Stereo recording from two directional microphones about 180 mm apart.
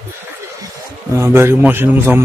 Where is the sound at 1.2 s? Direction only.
15° right (ahead or behind).